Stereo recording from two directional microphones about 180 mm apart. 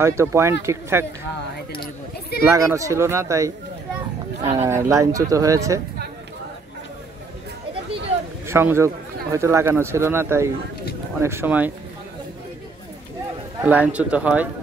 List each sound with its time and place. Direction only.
0.0 s speech: 15° right (ahead or behind)
2.5 s speech: 15° right (ahead or behind)
4.6 s speech: 15° right (ahead or behind)
8.5 s speech: 15° right (ahead or behind)
13.6 s speech: 10° right (ahead or behind)